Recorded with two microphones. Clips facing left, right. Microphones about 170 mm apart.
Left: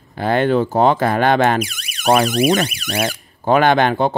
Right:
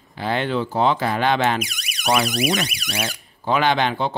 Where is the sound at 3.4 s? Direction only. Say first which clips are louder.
Left 6 dB; 50° left (ahead or behind).